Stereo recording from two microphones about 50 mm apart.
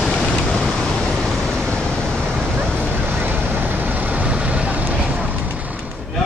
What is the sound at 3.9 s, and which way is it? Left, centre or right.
Vehicle, right.